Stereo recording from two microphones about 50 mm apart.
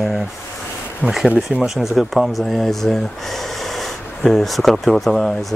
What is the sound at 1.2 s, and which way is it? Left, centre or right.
Speech, right.